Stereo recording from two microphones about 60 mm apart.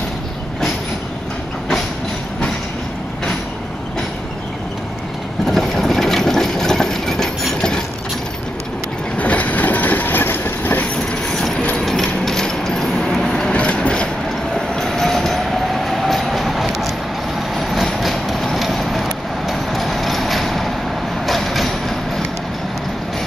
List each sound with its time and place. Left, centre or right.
5.5 s sewing machine: centre
9.2 s train: left
11.2 s train: centre
11.8 s a sound: centre
14.5 s train: centre
17.6 s vehicle: centre
21.3 s train: centre